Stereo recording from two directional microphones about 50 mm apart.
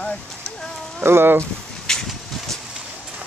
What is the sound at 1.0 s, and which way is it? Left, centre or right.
Speech, right.